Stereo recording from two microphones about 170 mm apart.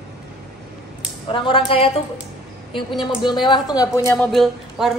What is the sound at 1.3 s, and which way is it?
Speech, 30° left (ahead or behind).